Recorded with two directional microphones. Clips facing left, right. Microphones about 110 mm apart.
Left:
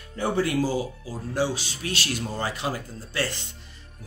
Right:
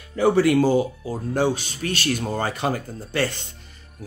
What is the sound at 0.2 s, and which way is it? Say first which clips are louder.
Speech: right 7 dB; 80° right.